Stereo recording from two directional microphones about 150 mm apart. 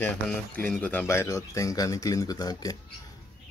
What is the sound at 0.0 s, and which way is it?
Speech, 10° left (ahead or behind).